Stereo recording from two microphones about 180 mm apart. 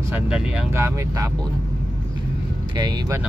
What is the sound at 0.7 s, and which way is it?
Speech, 15° right (ahead or behind).